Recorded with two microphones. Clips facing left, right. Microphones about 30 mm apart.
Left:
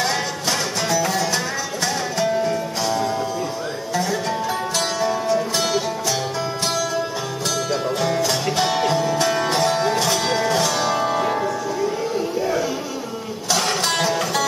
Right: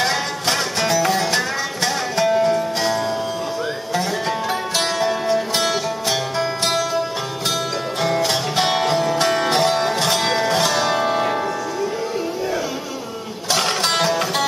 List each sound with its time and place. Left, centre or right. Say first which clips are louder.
0.0 s music: right 2 dB; right
8.2 s music: right 1 dB; right
13.5 s music: right 1 dB; right